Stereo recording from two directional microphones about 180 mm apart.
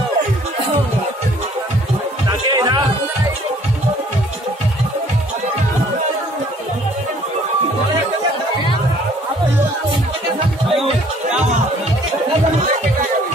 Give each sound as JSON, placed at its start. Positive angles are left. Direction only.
{"t": 2.4, "sound": "music", "side_deg": -25}